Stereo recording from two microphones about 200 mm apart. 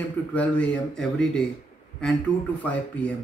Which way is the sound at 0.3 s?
5° left (ahead or behind).